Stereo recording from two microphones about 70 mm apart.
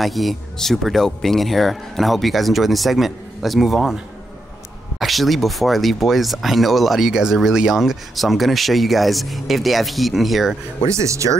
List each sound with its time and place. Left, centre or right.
0.0 s speech: centre
10.9 s speech: right